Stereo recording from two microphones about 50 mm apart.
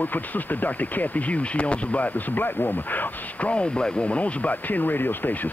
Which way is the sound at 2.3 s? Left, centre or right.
Left.